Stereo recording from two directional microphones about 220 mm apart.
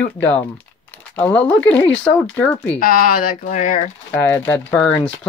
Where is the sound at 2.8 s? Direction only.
40° left (ahead or behind).